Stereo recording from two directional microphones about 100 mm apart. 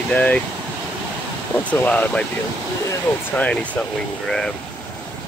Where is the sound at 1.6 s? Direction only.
15° left (ahead or behind).